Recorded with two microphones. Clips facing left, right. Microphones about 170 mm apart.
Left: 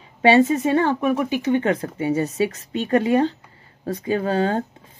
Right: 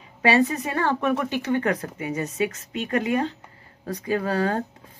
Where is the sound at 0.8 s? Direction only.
10° left (ahead or behind).